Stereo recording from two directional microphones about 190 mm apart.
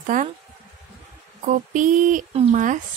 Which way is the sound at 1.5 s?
40° right (ahead or behind).